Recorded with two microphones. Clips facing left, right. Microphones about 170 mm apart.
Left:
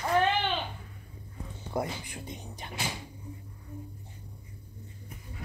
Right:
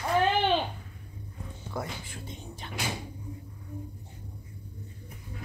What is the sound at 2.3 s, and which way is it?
Door, 15° left (ahead or behind).